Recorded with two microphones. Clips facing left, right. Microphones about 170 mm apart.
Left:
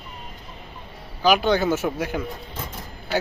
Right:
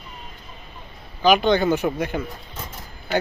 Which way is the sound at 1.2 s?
5° left (ahead or behind).